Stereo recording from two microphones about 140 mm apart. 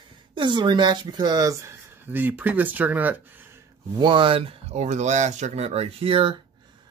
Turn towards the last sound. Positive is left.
turn(degrees=-40)  # may be behind; listen again after turning